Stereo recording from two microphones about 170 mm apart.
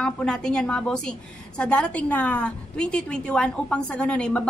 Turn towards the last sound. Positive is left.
turn(degrees=5)  # may be behind; listen again after turning